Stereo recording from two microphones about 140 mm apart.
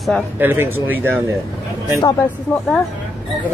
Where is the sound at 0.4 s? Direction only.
15° right (ahead or behind).